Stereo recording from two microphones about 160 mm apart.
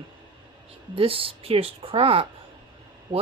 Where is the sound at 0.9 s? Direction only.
35° right (ahead or behind).